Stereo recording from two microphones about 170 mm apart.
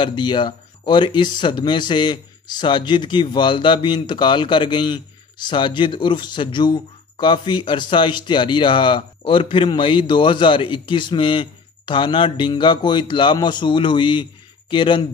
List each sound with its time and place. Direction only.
0.0 s speech: 25° left (ahead or behind)